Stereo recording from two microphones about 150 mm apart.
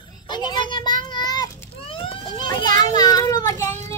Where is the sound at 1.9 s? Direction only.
35° left (ahead or behind).